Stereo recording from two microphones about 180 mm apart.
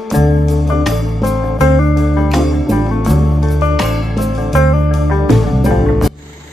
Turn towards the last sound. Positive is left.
turn(degrees=0)  # may be behind; listen again after turning